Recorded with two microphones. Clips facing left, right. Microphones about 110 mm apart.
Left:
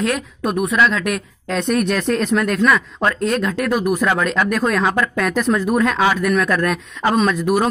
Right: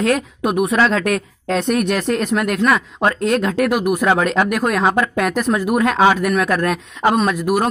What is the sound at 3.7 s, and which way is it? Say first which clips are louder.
Speech: right 1 dB; 10° right (ahead or behind).